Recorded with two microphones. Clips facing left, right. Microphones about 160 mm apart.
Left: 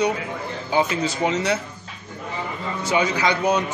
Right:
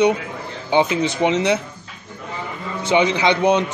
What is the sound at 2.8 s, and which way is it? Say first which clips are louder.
Speech: right 4 dB; 25° right (ahead or behind).